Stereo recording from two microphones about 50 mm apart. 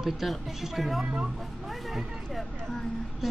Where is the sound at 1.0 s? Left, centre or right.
Centre.